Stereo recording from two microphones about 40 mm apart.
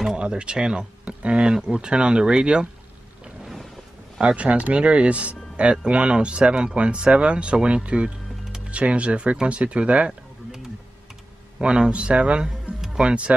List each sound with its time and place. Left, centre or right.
0.1 s speech: right
4.2 s speech: right
11.6 s speech: right